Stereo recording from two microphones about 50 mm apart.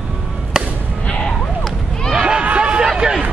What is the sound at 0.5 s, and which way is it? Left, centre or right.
Music, centre.